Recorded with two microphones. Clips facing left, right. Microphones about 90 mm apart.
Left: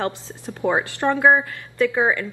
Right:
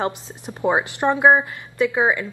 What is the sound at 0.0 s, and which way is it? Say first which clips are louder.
A woman's voice: right 1 dB; 20° right (ahead or behind).